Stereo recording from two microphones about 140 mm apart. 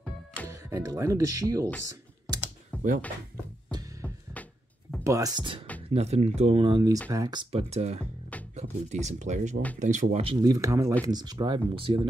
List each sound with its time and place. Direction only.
0.5 s speech: 20° right (ahead or behind)
1.9 s typing: 30° right (ahead or behind)
2.7 s a sound: 10° left (ahead or behind)
3.7 s music: 25° right (ahead or behind)
4.4 s music: 10° left (ahead or behind)
5.0 s speech: 25° right (ahead or behind)
5.9 s speech: 50° right (ahead or behind)
6.7 s speech: 25° right (ahead or behind)
7.5 s speech: 45° right (ahead or behind)
10.2 s speech: 30° right (ahead or behind)